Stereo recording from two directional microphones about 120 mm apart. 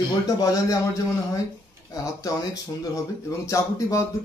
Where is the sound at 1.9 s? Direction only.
30° left (ahead or behind).